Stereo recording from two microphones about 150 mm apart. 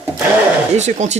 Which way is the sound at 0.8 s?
50° right (ahead or behind).